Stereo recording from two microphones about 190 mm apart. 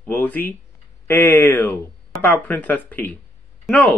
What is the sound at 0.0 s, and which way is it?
A man's voice, 10° left (ahead or behind).